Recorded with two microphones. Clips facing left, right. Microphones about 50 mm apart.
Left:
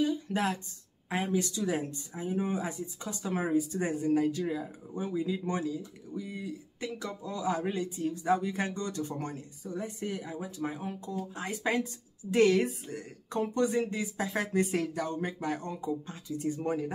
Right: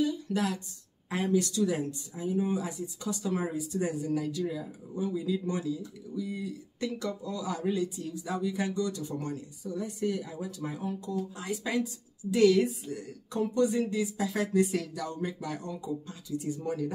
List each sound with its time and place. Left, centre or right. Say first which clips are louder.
0.0 s a sound: even; left
1.1 s speech: right 3 dB; left
1.8 s speech: right 2 dB; left